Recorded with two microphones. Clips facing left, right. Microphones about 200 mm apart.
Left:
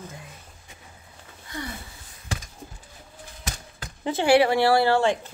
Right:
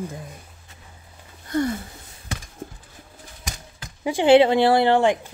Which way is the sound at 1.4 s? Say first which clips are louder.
Right 13 dB; 45° right (ahead or behind).